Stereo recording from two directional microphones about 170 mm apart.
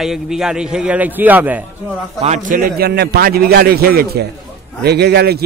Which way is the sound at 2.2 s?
45° right (ahead or behind).